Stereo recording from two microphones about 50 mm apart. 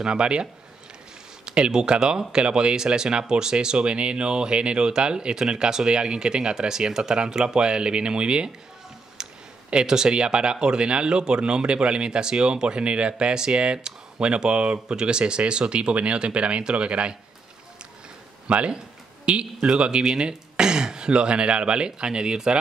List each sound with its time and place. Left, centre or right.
0.0 s speech: centre
18.5 s speech: right